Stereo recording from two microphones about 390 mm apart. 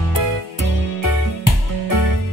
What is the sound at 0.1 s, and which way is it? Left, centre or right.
Music, left.